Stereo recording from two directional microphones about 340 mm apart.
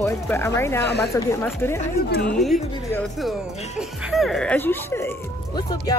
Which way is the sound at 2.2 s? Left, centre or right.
Centre.